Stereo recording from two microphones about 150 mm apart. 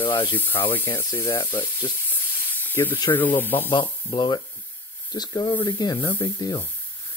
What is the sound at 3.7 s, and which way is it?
Speech, 35° left (ahead or behind).